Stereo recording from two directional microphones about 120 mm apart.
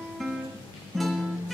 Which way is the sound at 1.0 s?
Centre (ahead or behind).